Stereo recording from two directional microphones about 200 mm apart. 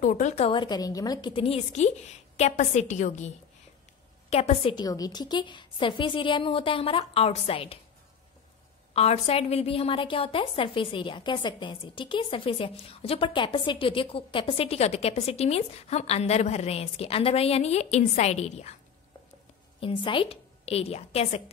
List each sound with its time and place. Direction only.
0.0 s a woman's voice: 40° left (ahead or behind)
4.3 s a woman's voice: 30° left (ahead or behind)
8.9 s a woman's voice: 30° left (ahead or behind)
19.8 s a woman's voice: 25° left (ahead or behind)